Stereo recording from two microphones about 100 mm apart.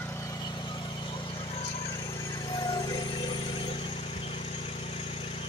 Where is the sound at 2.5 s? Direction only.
40° left (ahead or behind).